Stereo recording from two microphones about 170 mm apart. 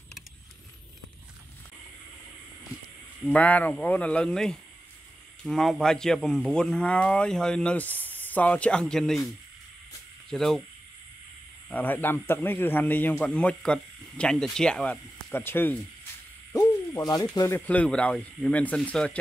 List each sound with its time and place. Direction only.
3.3 s a man's voice: 10° left (ahead or behind)
10.3 s a man's voice: centre (ahead or behind)
11.7 s a man's voice: 10° left (ahead or behind)
16.5 s hoot: 20° left (ahead or behind)
17.4 s a man's voice: 15° left (ahead or behind)